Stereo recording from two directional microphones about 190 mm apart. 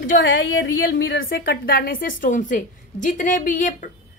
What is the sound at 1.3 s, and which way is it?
A woman's voice, 50° left (ahead or behind).